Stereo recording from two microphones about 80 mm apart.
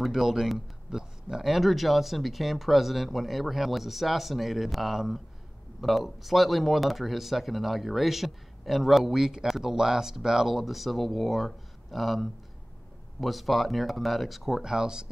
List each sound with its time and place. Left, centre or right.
0.0 s speech: centre